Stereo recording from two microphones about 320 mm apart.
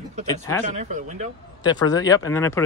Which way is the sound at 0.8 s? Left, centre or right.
Right.